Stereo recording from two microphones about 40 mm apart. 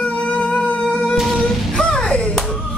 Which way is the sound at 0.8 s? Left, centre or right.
Centre.